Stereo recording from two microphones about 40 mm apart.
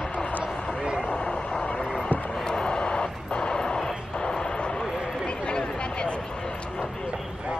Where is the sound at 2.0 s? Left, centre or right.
Left.